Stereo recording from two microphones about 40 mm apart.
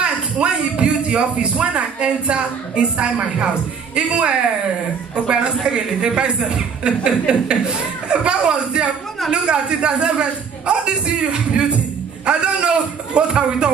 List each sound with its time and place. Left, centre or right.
0.0 s a man's voice: right